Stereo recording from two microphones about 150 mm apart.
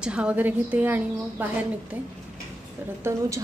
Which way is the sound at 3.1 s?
20° right (ahead or behind).